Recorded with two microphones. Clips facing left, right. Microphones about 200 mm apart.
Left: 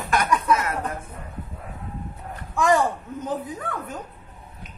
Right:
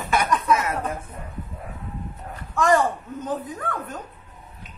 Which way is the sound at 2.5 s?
10° left (ahead or behind).